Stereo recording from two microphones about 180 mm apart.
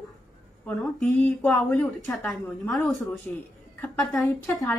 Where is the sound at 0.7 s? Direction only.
Centre (ahead or behind).